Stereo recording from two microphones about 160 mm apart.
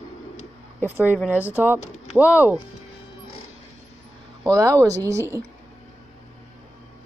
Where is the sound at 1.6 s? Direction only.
10° right (ahead or behind).